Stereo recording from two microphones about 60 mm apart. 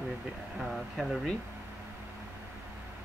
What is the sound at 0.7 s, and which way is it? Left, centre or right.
Speech, centre.